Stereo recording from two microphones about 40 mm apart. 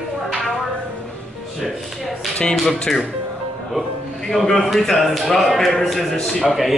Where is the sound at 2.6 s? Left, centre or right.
Centre.